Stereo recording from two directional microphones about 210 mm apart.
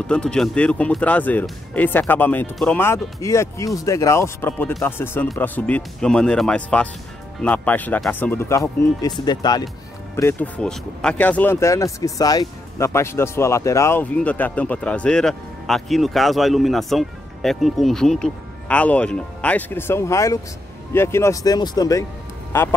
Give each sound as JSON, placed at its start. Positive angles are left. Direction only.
{"t": 0.0, "sound": "speech", "side_deg": 5}